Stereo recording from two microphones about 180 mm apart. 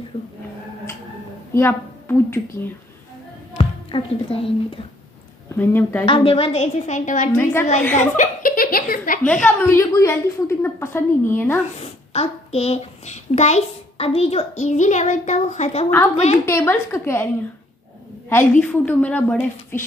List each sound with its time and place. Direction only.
0.1 s speech: 30° left (ahead or behind)
1.5 s a woman's voice: 10° left (ahead or behind)
3.5 s speech: 30° left (ahead or behind)
5.6 s a woman's voice: 10° left (ahead or behind)
6.0 s a child's voice: 30° left (ahead or behind)
7.8 s a woman's voice: 10° left (ahead or behind)
8.2 s speech: 50° left (ahead or behind)
9.2 s a woman's voice: 10° left (ahead or behind)
11.8 s a child's voice: 35° left (ahead or behind)
16.4 s a woman's voice: 15° left (ahead or behind)
18.3 s a woman's voice: 10° left (ahead or behind)